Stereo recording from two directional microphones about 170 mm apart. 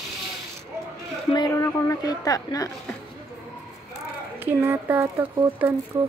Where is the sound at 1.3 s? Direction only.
25° left (ahead or behind).